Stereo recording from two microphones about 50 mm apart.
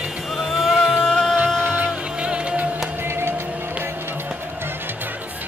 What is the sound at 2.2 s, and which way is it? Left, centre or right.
Music, right.